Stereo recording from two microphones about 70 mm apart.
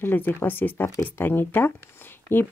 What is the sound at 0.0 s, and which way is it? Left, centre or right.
Speech, left.